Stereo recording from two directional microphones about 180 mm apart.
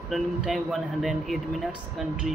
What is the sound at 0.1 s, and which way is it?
Speech, centre (ahead or behind).